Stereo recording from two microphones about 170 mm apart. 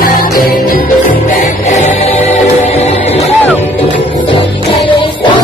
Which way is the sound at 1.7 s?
40° left (ahead or behind).